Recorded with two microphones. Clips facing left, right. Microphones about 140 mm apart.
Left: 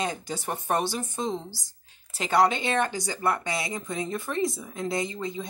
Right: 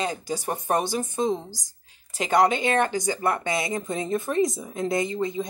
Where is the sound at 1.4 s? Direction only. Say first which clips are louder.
Right 1 dB; 45° right (ahead or behind).